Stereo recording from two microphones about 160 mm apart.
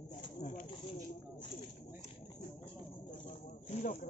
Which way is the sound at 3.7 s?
50° left (ahead or behind).